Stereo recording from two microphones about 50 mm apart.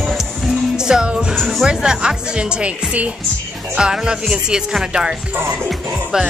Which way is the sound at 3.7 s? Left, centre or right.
Centre.